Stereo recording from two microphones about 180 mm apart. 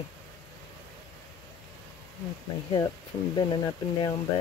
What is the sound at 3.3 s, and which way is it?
Speech, 25° left (ahead or behind).